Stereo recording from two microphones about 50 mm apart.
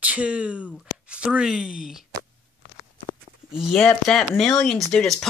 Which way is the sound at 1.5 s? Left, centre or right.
Centre.